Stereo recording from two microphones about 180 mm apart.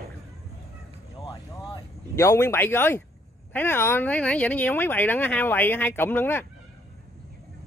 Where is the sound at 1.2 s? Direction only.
25° left (ahead or behind).